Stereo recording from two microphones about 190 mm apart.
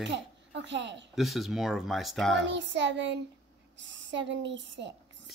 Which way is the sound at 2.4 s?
70° right (ahead or behind).